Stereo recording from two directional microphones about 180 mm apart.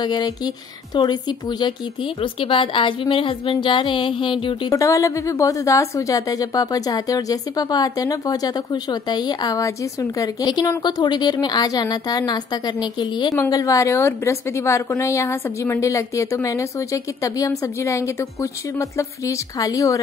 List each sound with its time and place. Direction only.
0.0 s speech: 25° left (ahead or behind)
2.4 s speech: 30° left (ahead or behind)